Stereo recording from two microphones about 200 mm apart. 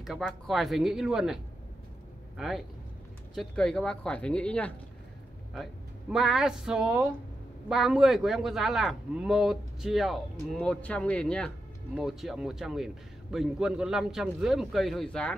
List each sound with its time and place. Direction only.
0.0 s a man's voice: centre (ahead or behind)